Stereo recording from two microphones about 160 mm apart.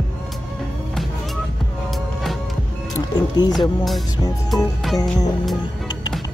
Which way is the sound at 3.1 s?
25° left (ahead or behind).